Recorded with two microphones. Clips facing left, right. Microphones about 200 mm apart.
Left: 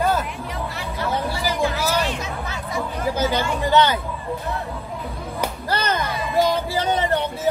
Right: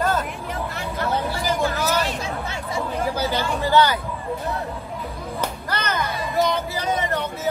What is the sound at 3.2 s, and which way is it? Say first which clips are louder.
Chatter: left 2 dB; 20° left (ahead or behind).